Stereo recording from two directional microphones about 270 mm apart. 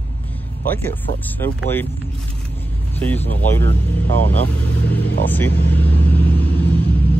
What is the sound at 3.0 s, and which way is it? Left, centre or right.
Speech, centre.